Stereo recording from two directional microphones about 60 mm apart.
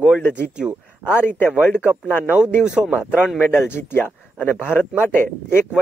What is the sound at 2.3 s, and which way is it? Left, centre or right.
Speech, centre.